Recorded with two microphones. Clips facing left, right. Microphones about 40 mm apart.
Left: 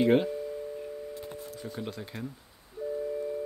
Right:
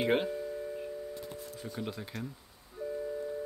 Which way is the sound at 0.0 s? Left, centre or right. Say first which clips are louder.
Left 5 dB; centre.